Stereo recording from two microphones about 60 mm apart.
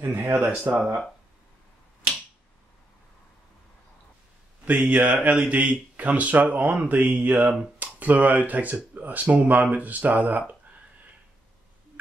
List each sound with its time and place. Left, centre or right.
0.0 s speech: right
4.6 s speech: right